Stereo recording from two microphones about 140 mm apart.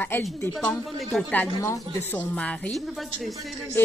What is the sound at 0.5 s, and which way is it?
A woman's voice, centre (ahead or behind).